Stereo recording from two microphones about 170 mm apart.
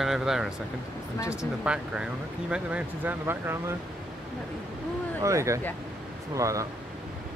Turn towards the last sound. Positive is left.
turn(degrees=-20)  # may be behind; listen again after turning